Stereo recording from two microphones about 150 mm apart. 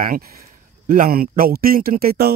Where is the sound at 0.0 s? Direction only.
75° right (ahead or behind).